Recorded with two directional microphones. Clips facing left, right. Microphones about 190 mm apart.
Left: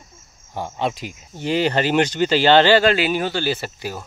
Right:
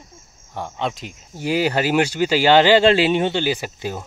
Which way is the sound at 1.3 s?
10° right (ahead or behind).